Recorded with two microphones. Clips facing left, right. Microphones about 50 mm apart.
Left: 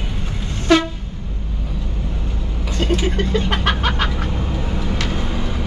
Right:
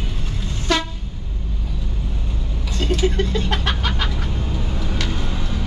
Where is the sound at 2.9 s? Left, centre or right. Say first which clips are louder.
Right 1 dB; left.